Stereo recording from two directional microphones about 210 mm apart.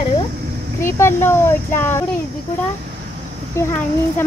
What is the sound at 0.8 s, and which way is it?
A woman's voice, 10° left (ahead or behind).